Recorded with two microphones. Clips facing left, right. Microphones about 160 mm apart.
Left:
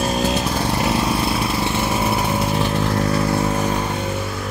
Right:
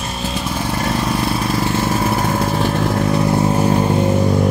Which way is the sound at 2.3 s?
45° right (ahead or behind).